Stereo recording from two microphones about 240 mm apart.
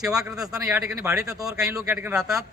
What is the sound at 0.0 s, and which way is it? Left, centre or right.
A man's voice, centre.